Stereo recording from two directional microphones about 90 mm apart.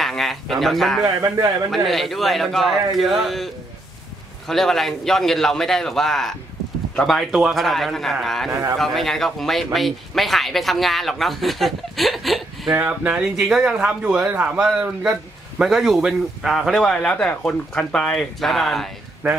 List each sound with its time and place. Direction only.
0.0 s speech: centre (ahead or behind)
1.0 s speech: 35° right (ahead or behind)
1.7 s speech: centre (ahead or behind)
4.5 s speech: 5° left (ahead or behind)
8.5 s speech: 30° right (ahead or behind)
8.7 s speech: 5° left (ahead or behind)
12.7 s speech: 25° right (ahead or behind)
13.1 s speech: 5° right (ahead or behind)
19.2 s speech: 20° right (ahead or behind)